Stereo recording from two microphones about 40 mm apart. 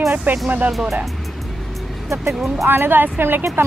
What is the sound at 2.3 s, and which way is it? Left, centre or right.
Speech, centre.